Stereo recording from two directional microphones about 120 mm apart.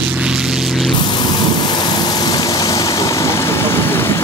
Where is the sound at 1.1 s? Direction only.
40° left (ahead or behind).